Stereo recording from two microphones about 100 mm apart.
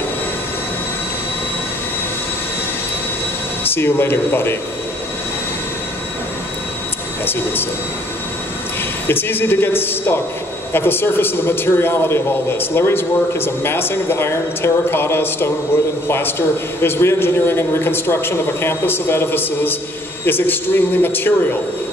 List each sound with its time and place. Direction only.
3.6 s a man's voice: 20° left (ahead or behind)
7.2 s a man's voice: 20° left (ahead or behind)
9.0 s a man's voice: 20° left (ahead or behind)